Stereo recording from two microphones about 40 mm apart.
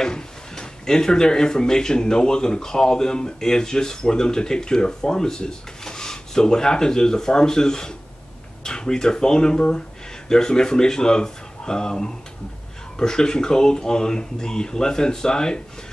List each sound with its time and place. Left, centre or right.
0.0 s speech: centre